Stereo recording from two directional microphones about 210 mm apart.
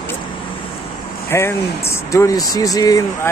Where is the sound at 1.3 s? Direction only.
15° left (ahead or behind).